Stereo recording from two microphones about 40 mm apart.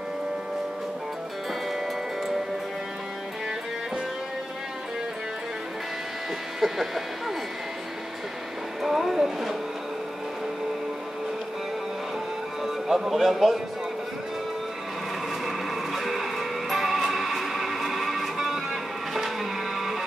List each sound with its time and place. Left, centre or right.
6.6 s speech: centre
8.8 s a sound: centre
12.6 s speech: centre
15.4 s music: centre